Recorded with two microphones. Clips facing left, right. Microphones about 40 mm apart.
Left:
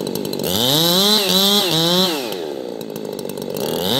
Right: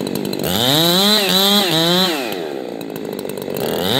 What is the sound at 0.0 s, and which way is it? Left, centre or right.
Chainsaw, right.